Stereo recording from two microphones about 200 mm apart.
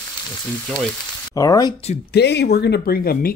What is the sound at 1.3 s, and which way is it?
Speech, 20° left (ahead or behind).